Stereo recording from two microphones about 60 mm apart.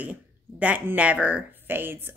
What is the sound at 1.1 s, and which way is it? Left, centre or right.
Speech, right.